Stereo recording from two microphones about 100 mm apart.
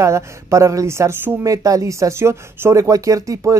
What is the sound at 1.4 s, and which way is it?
Speech, 35° right (ahead or behind).